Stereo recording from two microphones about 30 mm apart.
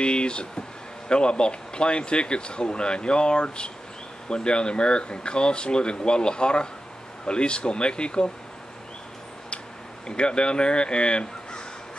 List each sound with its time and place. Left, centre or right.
0.0 s speech: left
10.0 s speech: left